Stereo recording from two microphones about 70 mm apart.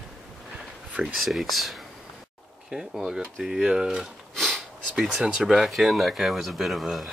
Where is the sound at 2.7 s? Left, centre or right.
Centre.